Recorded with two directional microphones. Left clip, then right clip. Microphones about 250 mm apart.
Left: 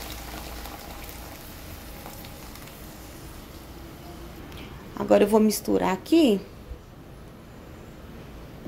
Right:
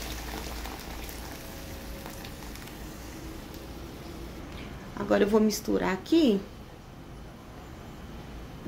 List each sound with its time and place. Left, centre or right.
4.9 s speech: centre